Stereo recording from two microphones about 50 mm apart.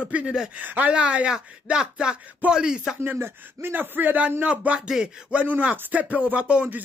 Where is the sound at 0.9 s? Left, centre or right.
Right.